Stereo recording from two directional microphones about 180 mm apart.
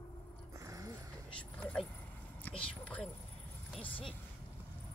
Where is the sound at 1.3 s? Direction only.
5° left (ahead or behind).